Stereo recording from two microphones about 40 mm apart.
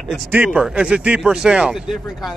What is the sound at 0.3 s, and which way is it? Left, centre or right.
Speech, right.